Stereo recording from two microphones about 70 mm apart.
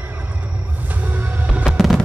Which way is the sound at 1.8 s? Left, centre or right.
Centre.